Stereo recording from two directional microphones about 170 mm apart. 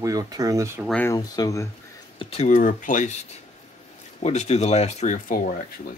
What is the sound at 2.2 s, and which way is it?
Speech, 35° left (ahead or behind).